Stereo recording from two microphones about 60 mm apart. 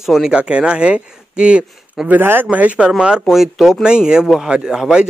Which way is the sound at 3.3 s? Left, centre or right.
Centre.